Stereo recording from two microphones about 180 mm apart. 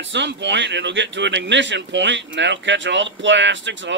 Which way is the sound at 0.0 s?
80° right.